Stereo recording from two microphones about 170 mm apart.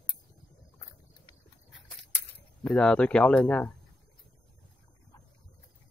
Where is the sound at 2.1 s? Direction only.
10° left (ahead or behind).